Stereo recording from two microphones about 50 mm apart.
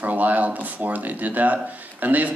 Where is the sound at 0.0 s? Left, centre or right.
Right.